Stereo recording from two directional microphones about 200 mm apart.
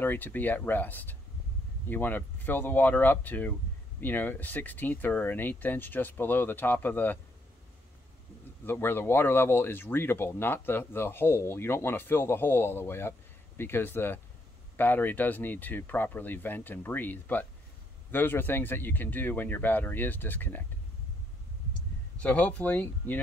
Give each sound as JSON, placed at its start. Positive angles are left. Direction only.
{"t": 0.0, "sound": "speech", "side_deg": 10}
{"t": 8.6, "sound": "speech", "side_deg": 10}
{"t": 22.2, "sound": "speech", "side_deg": 10}